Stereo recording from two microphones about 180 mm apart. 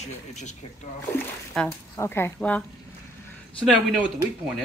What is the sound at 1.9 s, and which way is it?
Speech, 15° left (ahead or behind).